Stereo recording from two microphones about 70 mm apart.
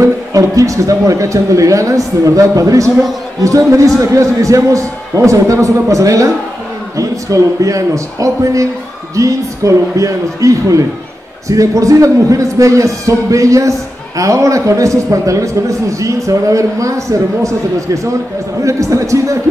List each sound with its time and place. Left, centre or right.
0.0 s a man's voice: right